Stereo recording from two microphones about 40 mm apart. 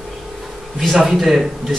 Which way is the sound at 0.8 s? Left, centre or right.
Centre.